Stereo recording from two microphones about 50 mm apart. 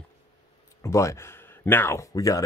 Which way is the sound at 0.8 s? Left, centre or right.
Left.